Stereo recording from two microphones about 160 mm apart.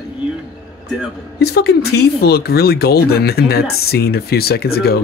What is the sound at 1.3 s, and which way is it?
Speech, 85° left.